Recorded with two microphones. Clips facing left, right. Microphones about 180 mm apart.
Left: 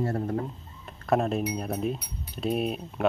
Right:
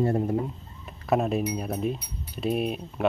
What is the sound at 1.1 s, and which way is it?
Speech, 5° right (ahead or behind).